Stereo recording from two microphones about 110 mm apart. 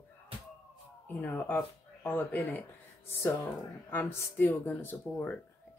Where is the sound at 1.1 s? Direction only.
15° left (ahead or behind).